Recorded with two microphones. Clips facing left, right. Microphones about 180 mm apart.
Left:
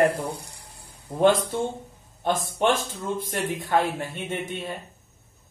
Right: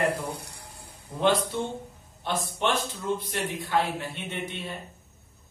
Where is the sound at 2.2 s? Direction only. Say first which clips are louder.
Left 5 dB; 45° left (ahead or behind).